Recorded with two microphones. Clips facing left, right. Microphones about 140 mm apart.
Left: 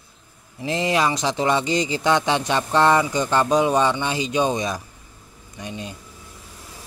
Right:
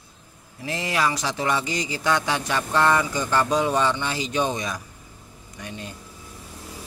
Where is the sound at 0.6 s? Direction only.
25° left (ahead or behind).